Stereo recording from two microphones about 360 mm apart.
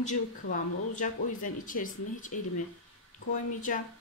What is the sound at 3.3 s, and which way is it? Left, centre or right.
Speech, left.